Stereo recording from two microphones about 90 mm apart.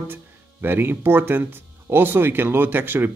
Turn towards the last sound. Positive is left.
turn(degrees=-25)  # may be behind; listen again after turning